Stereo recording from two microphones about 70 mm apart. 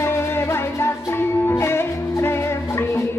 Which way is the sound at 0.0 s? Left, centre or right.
Left.